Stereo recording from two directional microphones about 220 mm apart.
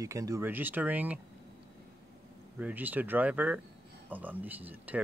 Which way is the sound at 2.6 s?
5° right (ahead or behind).